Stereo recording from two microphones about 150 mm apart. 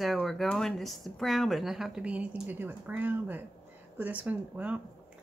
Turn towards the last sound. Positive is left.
turn(degrees=-10)  # may be behind; listen again after turning